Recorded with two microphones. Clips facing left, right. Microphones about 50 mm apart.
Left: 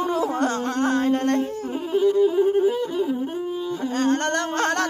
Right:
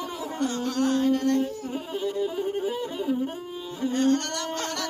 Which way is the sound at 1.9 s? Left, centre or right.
Centre.